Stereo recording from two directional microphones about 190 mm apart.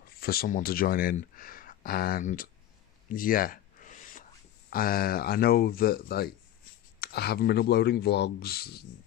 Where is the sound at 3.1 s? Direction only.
45° left (ahead or behind).